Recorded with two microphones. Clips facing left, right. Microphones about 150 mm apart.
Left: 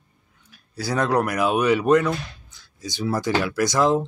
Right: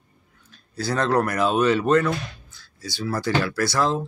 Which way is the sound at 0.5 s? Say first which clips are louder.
Right 1 dB; 10° left (ahead or behind).